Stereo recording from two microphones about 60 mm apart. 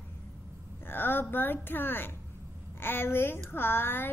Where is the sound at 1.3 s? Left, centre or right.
Left.